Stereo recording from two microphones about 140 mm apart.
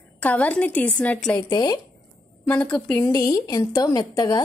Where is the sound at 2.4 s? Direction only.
10° left (ahead or behind).